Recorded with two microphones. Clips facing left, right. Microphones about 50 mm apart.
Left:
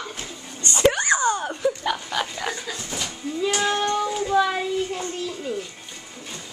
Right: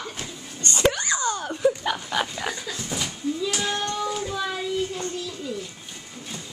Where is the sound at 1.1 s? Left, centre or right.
Left.